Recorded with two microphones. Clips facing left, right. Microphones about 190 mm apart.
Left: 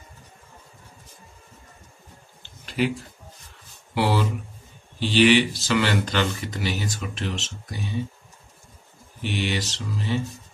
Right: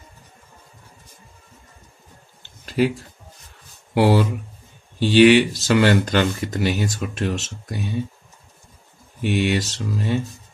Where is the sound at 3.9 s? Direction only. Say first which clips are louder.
Right 6 dB; 50° right (ahead or behind).